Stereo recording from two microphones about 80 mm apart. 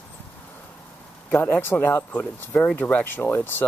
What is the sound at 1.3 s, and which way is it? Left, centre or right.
Speech, left.